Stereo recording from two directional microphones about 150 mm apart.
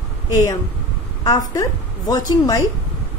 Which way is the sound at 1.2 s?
20° left (ahead or behind).